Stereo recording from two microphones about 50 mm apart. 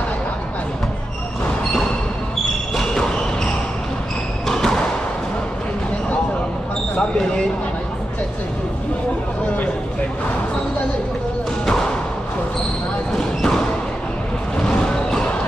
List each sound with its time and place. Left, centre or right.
2.7 s a sound: centre
4.5 s basketball bounce: centre
7.0 s speech: centre
13.1 s basketball bounce: centre
14.6 s music: centre